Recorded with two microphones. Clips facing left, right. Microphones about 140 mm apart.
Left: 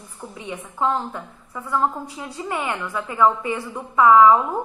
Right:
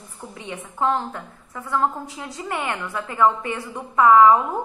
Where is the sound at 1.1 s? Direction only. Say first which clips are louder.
Left 1 dB; 20° left (ahead or behind).